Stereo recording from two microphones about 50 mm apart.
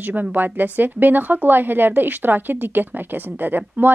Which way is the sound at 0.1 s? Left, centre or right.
Right.